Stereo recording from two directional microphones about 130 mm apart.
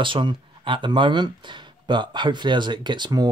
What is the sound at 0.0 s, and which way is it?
Speech, 40° right (ahead or behind).